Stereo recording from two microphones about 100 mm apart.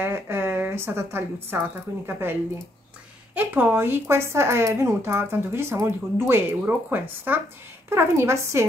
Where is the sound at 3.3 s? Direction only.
20° right (ahead or behind).